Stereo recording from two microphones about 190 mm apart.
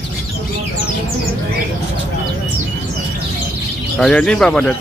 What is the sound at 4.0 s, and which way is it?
Speech, 5° left (ahead or behind).